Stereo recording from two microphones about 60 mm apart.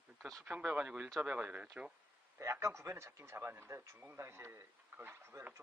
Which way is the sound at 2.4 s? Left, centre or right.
Right.